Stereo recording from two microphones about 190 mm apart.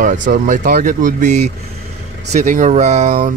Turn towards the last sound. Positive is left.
turn(degrees=-50)  # may be behind; listen again after turning